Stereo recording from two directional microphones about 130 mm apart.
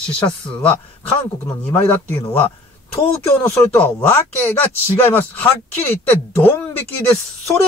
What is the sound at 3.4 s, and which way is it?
Speech, 15° left (ahead or behind).